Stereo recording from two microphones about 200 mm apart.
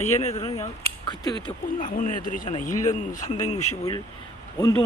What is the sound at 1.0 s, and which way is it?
Speech, 20° left (ahead or behind).